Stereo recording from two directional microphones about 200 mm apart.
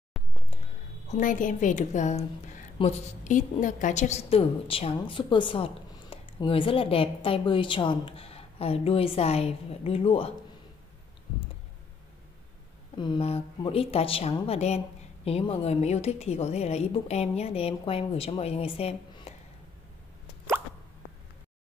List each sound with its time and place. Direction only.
0.2 s music: centre (ahead or behind)
1.0 s a woman's voice: 40° left (ahead or behind)
12.9 s a woman's voice: 25° left (ahead or behind)